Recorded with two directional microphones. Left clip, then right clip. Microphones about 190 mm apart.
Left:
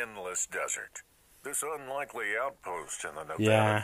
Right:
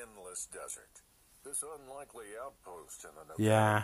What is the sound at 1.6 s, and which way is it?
Speech, 15° left (ahead or behind).